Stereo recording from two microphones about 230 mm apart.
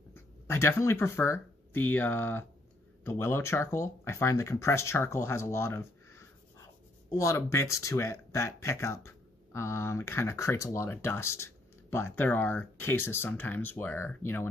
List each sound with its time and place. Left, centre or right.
0.1 s speech: centre